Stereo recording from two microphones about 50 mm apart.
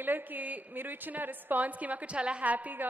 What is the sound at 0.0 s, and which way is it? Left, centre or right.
A woman's voice, right.